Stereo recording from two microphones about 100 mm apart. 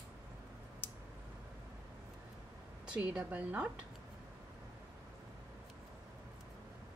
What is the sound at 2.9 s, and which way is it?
Speech, 10° right (ahead or behind).